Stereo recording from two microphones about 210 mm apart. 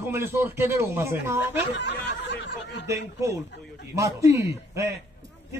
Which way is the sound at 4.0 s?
15° right (ahead or behind).